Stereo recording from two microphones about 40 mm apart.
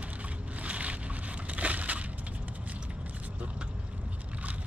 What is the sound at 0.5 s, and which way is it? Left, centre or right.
Crushing, right.